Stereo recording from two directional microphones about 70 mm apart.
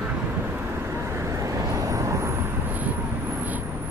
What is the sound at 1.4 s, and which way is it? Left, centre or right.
Vehicle, right.